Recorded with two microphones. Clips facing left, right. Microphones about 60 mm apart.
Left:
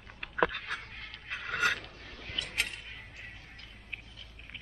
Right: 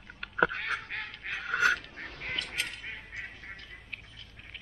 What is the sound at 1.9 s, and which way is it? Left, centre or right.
Duck, right.